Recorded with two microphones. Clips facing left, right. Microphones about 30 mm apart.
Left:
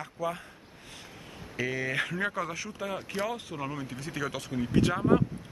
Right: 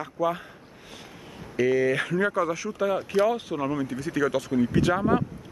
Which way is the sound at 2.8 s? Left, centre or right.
Right.